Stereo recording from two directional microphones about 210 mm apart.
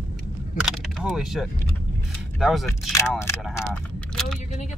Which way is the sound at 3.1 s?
10° left (ahead or behind).